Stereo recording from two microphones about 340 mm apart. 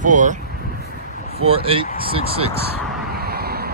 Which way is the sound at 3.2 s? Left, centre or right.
Right.